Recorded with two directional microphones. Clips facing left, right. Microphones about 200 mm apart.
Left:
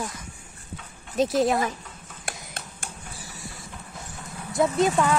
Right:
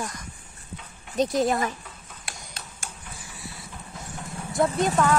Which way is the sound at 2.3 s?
50° left (ahead or behind).